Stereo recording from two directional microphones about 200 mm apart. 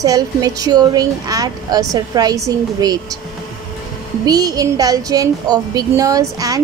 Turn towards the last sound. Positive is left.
turn(degrees=-15)  # may be behind; listen again after turning